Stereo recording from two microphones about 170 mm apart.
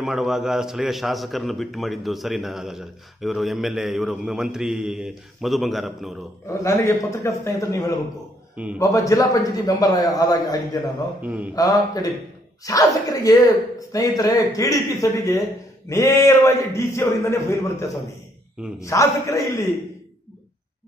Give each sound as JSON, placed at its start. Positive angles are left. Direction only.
{"t": 0.0, "sound": "a man's voice", "side_deg": 0}
{"t": 6.4, "sound": "a man's voice", "side_deg": 15}
{"t": 11.2, "sound": "speech", "side_deg": -10}
{"t": 11.5, "sound": "a man's voice", "side_deg": 20}